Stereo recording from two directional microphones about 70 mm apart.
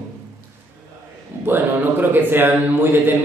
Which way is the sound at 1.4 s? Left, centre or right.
Right.